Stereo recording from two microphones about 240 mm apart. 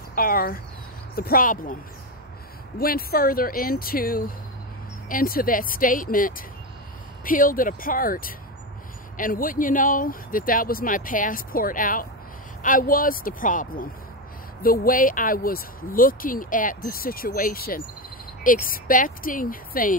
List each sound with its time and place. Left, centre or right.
0.1 s speech: left
2.8 s speech: left